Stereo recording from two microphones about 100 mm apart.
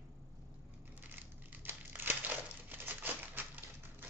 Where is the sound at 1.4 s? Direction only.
20° right (ahead or behind).